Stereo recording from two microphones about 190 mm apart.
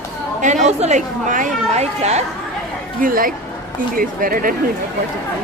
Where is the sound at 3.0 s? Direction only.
50° right (ahead or behind).